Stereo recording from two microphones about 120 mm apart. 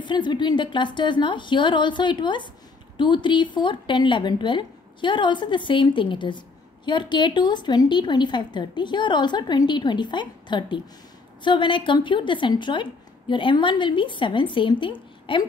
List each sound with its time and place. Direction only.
0.0 s a woman's voice: 40° left (ahead or behind)